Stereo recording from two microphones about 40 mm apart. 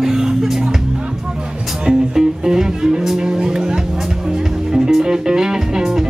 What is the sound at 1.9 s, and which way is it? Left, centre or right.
Music, centre.